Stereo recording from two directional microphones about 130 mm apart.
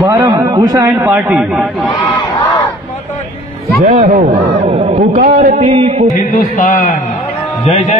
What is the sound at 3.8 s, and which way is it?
A man's voice, 65° right (ahead or behind).